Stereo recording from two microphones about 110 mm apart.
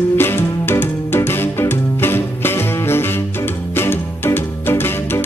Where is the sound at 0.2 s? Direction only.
20° left (ahead or behind).